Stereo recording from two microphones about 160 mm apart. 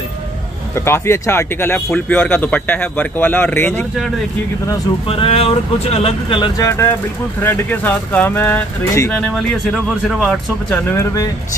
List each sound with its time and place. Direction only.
0.7 s speech: 15° left (ahead or behind)
5.0 s speech: 35° left (ahead or behind)
7.4 s speech: 10° left (ahead or behind)
9.1 s speech: centre (ahead or behind)